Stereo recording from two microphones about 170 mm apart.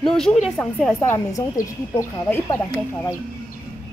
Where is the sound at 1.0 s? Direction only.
15° left (ahead or behind).